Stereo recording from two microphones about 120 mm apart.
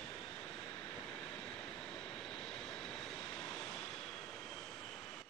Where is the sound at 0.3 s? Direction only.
10° left (ahead or behind).